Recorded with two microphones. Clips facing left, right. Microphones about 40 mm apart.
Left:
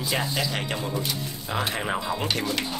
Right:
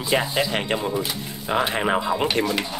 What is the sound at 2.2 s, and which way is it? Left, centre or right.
Speech, right.